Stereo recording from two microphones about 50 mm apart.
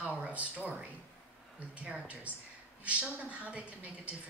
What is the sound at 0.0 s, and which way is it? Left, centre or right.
Speech, right.